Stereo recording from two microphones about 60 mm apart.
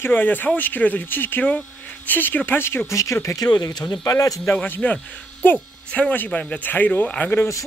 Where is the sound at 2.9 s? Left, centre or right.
Left.